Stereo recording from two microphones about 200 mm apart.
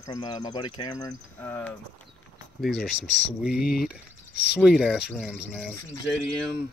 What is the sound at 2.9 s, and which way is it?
Speech, 5° right (ahead or behind).